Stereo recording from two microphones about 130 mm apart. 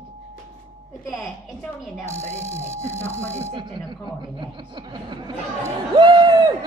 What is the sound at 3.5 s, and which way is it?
Speech, 40° right (ahead or behind).